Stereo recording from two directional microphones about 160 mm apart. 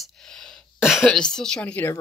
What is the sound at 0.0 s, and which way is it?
Speech, 5° left (ahead or behind).